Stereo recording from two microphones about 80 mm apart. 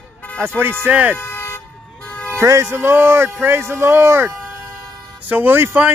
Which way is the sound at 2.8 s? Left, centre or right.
Right.